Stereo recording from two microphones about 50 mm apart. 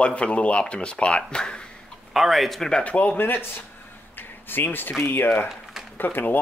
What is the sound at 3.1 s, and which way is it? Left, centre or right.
Speech, left.